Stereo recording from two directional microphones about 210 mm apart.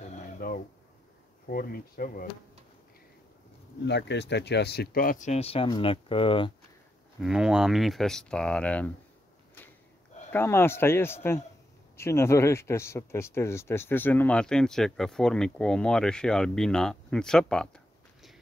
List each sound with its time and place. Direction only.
0.4 s a sound: 45° left (ahead or behind)
1.5 s speech: 45° left (ahead or behind)
3.8 s speech: 55° left (ahead or behind); by 6.5 s 25° left (ahead or behind)
7.2 s speech: centre (ahead or behind)
10.3 s speech: 10° left (ahead or behind)